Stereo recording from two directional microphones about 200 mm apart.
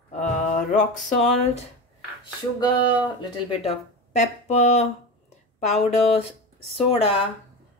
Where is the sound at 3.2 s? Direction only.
25° left (ahead or behind).